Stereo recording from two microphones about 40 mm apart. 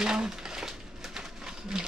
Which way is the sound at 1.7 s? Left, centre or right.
Centre.